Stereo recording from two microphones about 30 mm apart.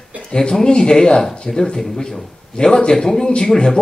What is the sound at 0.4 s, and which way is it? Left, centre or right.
A man's voice, centre.